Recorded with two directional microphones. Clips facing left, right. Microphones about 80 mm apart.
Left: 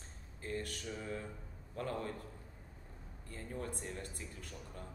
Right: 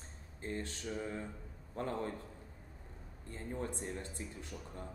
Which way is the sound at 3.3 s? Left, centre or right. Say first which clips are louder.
Right 2 dB; right.